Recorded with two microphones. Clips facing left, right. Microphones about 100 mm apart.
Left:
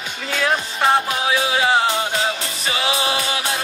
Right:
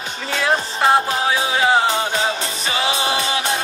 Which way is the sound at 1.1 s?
35° right (ahead or behind).